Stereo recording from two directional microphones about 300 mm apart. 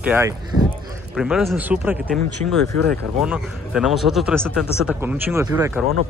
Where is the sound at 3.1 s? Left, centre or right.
Centre.